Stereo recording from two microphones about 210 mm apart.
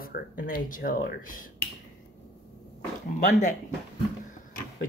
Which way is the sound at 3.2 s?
35° left (ahead or behind).